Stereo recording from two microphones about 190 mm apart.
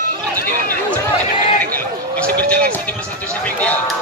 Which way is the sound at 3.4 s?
5° left (ahead or behind).